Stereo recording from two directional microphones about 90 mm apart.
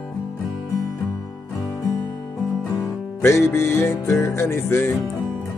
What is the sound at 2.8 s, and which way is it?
Music, 35° left (ahead or behind).